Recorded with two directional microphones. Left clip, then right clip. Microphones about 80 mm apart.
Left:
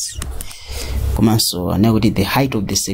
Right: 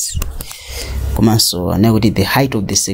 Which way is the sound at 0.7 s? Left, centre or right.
Right.